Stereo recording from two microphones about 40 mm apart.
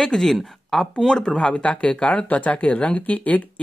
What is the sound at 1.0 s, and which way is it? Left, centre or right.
Speech, centre.